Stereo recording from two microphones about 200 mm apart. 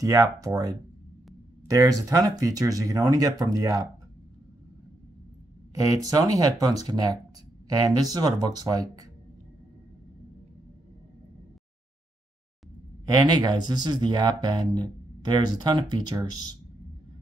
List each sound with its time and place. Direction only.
0.0 s speech: 15° right (ahead or behind)
5.8 s speech: 15° right (ahead or behind)
13.0 s speech: 20° right (ahead or behind)